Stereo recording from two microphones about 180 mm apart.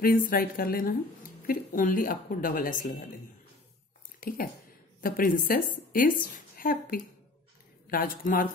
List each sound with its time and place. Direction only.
0.0 s a woman's voice: 50° left (ahead or behind)
4.2 s a woman's voice: 50° left (ahead or behind)